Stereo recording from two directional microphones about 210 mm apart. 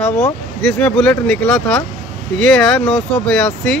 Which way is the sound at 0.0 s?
5° left (ahead or behind).